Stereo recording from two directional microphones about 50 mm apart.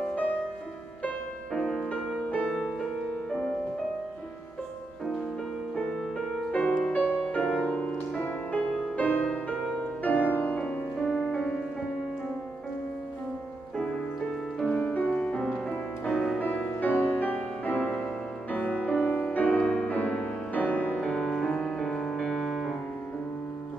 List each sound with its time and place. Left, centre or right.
0.0 s music: left
1.5 s music: centre
3.3 s music: centre
6.5 s music: left
7.4 s music: right
8.2 s music: left
11.0 s music: left
11.2 s music: left
13.7 s music: centre
15.3 s music: centre
15.7 s music: left
21.0 s music: centre
22.4 s music: centre